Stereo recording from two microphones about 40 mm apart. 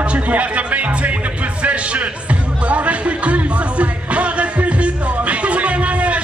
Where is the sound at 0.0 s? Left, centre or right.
Right.